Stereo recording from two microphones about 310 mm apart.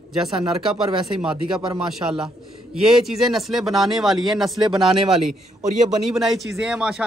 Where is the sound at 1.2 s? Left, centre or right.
Centre.